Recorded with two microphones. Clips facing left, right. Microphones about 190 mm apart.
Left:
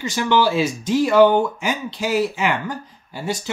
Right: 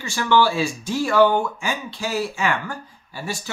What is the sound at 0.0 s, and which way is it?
Speech, 20° left (ahead or behind).